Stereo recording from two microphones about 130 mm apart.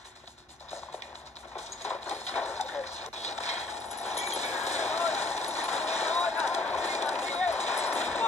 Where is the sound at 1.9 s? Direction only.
10° left (ahead or behind).